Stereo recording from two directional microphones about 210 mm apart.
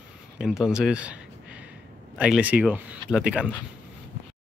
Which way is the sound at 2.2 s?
5° right (ahead or behind).